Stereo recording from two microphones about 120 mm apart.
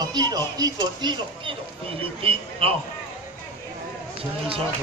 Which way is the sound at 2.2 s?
50° right (ahead or behind).